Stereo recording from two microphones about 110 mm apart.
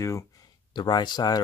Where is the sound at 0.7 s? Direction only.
40° left (ahead or behind).